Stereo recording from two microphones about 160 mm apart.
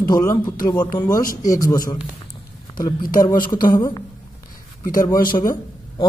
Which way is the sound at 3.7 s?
25° left (ahead or behind).